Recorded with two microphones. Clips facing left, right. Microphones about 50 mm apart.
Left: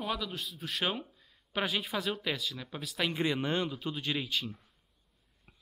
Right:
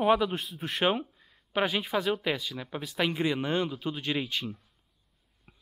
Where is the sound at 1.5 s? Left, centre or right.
Centre.